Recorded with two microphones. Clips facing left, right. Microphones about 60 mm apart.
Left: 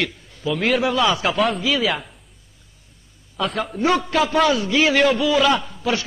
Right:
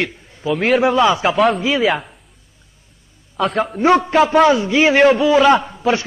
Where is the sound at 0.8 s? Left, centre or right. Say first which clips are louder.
Right 5 dB; right.